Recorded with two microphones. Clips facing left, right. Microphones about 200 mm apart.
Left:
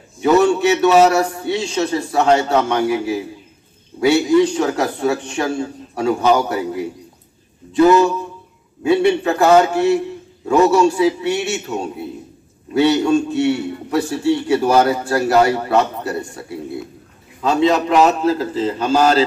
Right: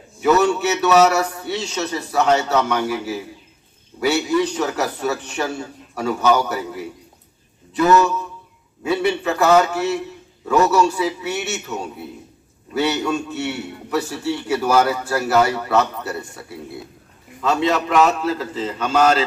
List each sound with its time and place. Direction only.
0.2 s a man's voice: 30° left (ahead or behind)